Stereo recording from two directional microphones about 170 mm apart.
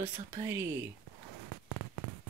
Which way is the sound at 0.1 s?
20° right (ahead or behind).